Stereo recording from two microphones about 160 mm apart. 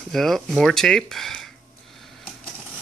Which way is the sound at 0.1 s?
Centre (ahead or behind).